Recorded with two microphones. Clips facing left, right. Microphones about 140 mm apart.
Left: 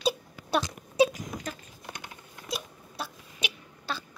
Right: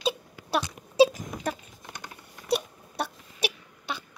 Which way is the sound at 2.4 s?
65° right (ahead or behind).